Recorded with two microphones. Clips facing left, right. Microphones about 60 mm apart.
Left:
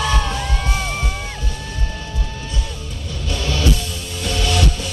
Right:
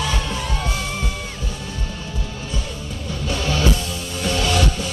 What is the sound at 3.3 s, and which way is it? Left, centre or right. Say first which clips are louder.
Music: even; right.